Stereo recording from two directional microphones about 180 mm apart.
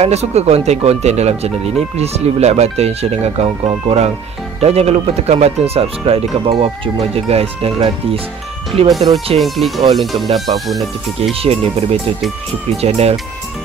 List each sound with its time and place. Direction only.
0.0 s speech: 35° right (ahead or behind)
9.4 s speech: centre (ahead or behind)
11.4 s speech: 35° right (ahead or behind)